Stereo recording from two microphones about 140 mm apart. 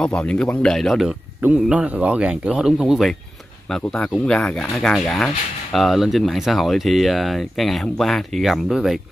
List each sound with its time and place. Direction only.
0.0 s speech: 5° left (ahead or behind)